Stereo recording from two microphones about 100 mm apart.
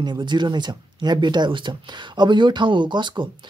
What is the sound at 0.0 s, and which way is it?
Speech, 50° right (ahead or behind).